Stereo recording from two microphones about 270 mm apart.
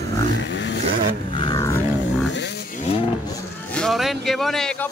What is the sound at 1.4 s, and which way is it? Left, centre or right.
Roaring cats, centre.